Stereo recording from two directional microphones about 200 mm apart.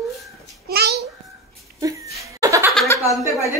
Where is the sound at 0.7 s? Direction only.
55° right (ahead or behind).